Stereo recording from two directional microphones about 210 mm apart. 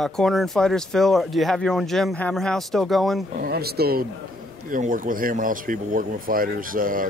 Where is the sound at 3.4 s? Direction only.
50° right (ahead or behind).